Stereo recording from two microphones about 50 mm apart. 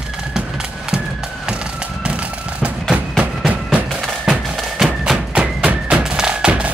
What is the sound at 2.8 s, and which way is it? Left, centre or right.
Music, centre.